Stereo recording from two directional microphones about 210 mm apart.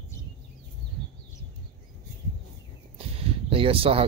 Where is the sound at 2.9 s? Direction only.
25° right (ahead or behind).